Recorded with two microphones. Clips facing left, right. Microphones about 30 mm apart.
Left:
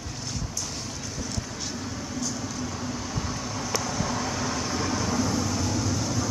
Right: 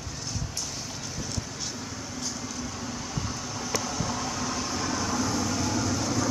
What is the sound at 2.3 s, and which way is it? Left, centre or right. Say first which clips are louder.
Vehicle: left 3 dB; centre.